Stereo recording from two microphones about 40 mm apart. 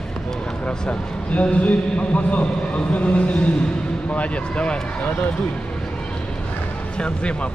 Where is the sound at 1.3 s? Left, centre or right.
Left.